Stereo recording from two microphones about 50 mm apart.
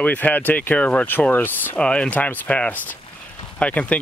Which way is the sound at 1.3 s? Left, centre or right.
Left.